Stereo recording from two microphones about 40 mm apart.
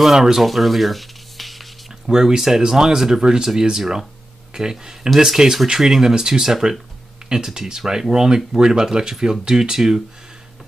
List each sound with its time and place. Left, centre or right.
0.0 s speech: centre
0.5 s rub: centre
2.0 s speech: centre